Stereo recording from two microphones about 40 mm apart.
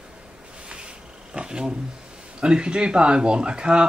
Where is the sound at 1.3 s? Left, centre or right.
Right.